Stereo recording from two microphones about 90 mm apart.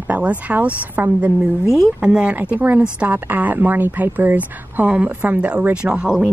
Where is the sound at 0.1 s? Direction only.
15° right (ahead or behind).